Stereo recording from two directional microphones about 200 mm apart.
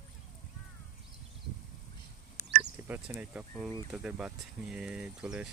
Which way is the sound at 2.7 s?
10° right (ahead or behind).